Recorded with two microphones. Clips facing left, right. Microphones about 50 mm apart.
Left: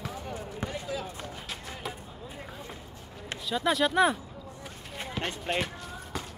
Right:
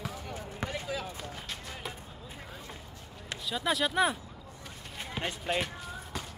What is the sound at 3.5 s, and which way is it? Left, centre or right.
Speech, centre.